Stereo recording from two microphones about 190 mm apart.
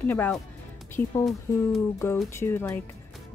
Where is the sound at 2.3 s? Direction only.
15° left (ahead or behind).